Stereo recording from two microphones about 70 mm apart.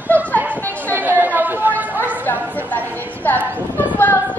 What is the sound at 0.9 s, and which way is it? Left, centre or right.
Chatter, right.